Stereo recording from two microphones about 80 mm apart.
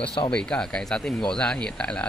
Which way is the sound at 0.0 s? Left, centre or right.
Left.